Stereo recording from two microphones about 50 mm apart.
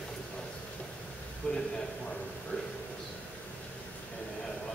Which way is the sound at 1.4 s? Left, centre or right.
Centre.